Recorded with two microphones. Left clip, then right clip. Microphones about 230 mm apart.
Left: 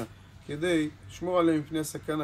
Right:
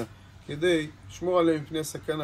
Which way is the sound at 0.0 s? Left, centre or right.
Centre.